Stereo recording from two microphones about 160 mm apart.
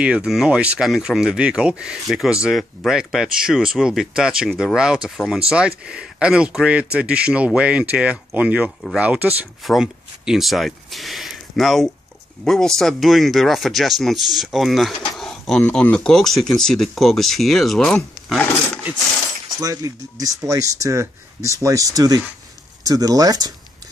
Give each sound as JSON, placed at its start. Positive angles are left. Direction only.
{"t": 0.0, "sound": "speech", "side_deg": -5}
{"t": 19.6, "sound": "speech", "side_deg": -20}